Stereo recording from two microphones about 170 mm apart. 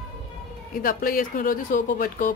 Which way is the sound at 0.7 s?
55° left (ahead or behind).